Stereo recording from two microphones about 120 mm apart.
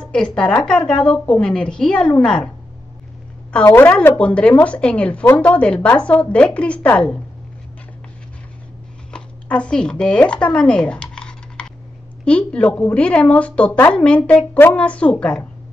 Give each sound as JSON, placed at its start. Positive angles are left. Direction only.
{"t": 0.0, "sound": "a woman's voice", "side_deg": 5}
{"t": 3.6, "sound": "a woman's voice", "side_deg": 20}
{"t": 9.1, "sound": "a woman's voice", "side_deg": 10}